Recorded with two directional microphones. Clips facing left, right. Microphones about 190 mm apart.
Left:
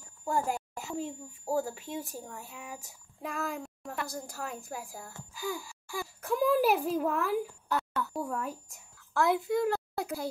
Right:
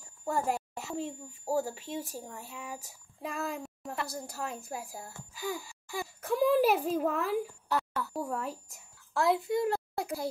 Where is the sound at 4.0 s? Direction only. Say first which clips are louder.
Right 1 dB; centre (ahead or behind).